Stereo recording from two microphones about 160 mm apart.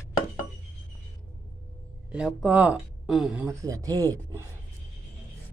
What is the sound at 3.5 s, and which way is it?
Speech, 20° right (ahead or behind).